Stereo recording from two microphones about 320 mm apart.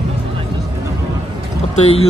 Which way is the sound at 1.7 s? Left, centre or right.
Centre.